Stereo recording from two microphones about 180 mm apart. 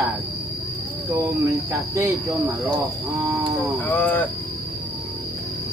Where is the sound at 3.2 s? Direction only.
Centre (ahead or behind).